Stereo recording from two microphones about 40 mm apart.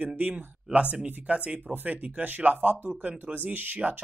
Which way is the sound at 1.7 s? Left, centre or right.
Right.